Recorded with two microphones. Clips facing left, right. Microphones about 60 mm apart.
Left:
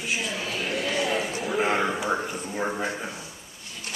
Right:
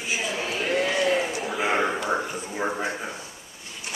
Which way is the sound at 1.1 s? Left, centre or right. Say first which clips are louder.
Right 3 dB; centre.